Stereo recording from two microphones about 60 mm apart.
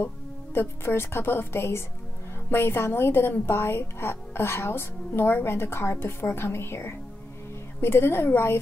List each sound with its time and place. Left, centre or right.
0.6 s a woman's voice: left